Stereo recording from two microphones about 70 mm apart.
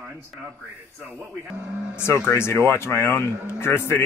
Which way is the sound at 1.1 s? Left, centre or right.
Centre.